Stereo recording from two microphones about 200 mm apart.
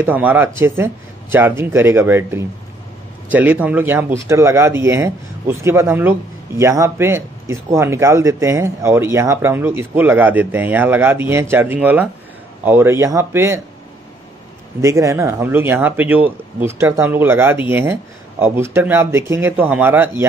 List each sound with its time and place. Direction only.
0.0 s speech: 10° right (ahead or behind)
14.8 s speech: 15° right (ahead or behind)